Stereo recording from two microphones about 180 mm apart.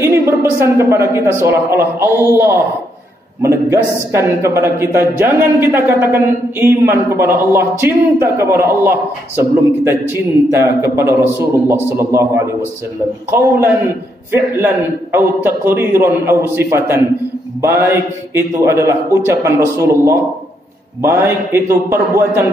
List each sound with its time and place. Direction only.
0.0 s a woman's voice: 15° right (ahead or behind)
13.3 s a woman's voice: 15° right (ahead or behind)